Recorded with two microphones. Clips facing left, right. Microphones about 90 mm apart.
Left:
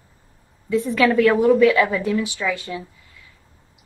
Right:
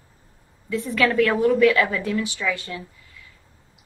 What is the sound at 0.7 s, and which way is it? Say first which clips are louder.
A woman's voice: left 4 dB; 20° left (ahead or behind).